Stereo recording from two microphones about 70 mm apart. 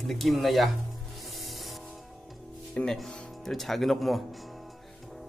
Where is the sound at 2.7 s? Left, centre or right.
Centre.